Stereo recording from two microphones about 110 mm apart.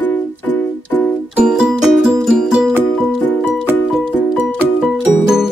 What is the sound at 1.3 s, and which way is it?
Music, 10° right (ahead or behind).